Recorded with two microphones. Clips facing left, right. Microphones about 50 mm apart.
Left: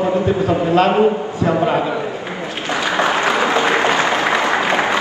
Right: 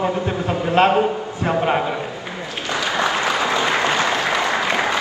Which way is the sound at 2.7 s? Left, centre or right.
Left.